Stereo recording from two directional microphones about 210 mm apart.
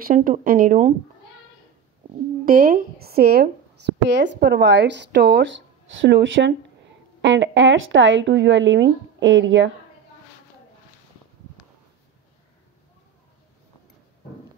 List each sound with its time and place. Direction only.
0.0 s speech: 40° right (ahead or behind)
2.4 s speech: 45° right (ahead or behind); by 9.7 s 60° right (ahead or behind)